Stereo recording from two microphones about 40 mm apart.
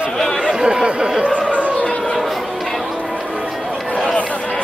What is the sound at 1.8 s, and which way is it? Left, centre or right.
Chatter, centre.